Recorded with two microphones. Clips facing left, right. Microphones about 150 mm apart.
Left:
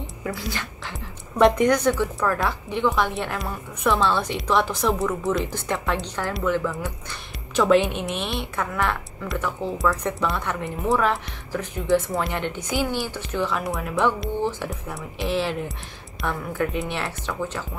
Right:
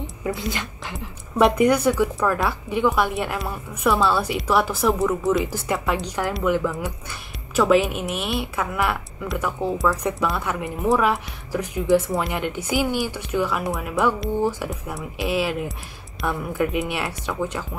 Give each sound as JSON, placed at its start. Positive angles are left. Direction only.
{"t": 0.5, "sound": "speech", "side_deg": -20}
{"t": 0.9, "sound": "a woman's voice", "side_deg": -5}
{"t": 6.7, "sound": "speech", "side_deg": -5}
{"t": 11.9, "sound": "a woman's voice", "side_deg": 0}
{"t": 17.3, "sound": "a woman's voice", "side_deg": -15}